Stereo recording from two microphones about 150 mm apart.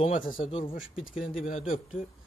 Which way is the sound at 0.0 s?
60° left (ahead or behind).